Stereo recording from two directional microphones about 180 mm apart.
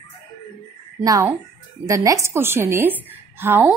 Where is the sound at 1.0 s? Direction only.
20° right (ahead or behind).